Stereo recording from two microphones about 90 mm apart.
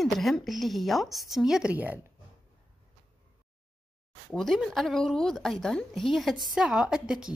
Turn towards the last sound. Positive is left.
turn(degrees=-5)  # may be behind; listen again after turning